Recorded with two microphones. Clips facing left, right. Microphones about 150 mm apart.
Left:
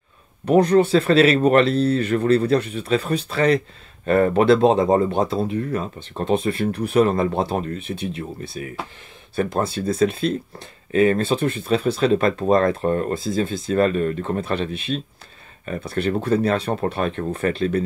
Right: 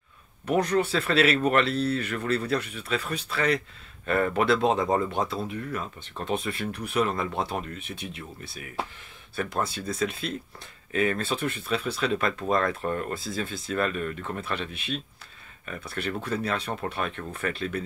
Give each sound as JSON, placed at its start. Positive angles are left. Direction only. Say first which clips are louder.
{"t": 0.5, "sound": "speech", "louder": "left 9 dB", "side_deg": 30}